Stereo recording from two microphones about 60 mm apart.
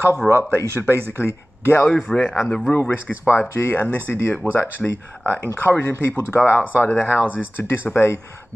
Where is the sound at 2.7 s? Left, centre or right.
Left.